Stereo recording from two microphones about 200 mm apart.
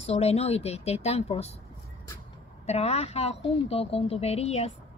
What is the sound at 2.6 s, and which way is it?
Speech, 30° left (ahead or behind).